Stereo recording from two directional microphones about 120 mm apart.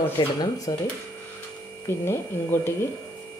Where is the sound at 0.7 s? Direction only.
25° left (ahead or behind).